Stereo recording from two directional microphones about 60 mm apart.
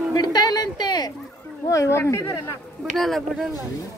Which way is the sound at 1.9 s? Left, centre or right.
Left.